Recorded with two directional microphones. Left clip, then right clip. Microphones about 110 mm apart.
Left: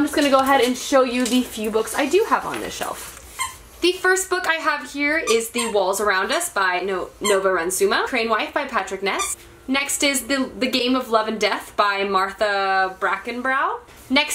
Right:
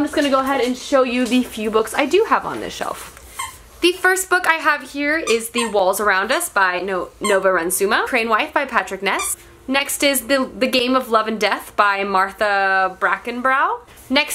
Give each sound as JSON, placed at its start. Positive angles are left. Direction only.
{"t": 0.1, "sound": "a woman's voice", "side_deg": 0}
{"t": 1.1, "sound": "a woman's voice", "side_deg": -35}
{"t": 3.8, "sound": "a woman's voice", "side_deg": -35}
{"t": 7.2, "sound": "speech", "side_deg": -50}
{"t": 7.7, "sound": "a woman's voice", "side_deg": -35}